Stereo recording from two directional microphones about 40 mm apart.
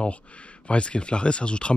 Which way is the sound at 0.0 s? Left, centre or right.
Left.